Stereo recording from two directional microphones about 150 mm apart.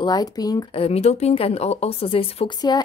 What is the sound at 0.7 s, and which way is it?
A woman's voice, 40° left (ahead or behind).